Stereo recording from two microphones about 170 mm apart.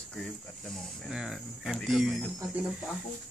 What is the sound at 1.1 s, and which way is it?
Speech, centre (ahead or behind).